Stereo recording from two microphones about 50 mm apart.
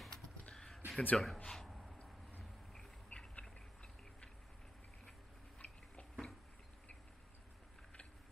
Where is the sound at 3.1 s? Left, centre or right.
Centre.